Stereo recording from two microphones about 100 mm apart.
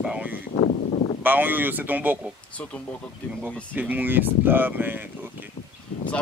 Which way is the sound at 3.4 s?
15° right (ahead or behind).